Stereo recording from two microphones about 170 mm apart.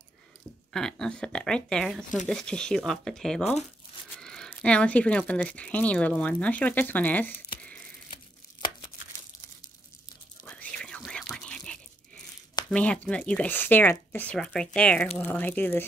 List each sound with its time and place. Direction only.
0.7 s speech: 5° left (ahead or behind)
8.1 s tearing: 25° left (ahead or behind)
10.4 s whispering: 5° left (ahead or behind)
12.6 s speech: 5° left (ahead or behind)